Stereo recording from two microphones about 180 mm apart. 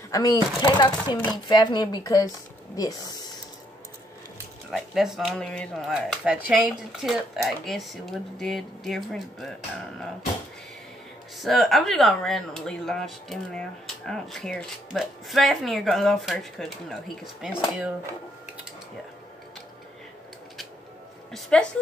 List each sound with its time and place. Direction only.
0.1 s speech: 20° left (ahead or behind)
4.6 s speech: centre (ahead or behind)
11.3 s speech: centre (ahead or behind)
21.3 s speech: 5° left (ahead or behind)